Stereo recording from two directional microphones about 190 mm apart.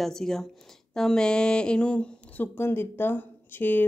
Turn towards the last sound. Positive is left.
turn(degrees=10)  # may be behind; listen again after turning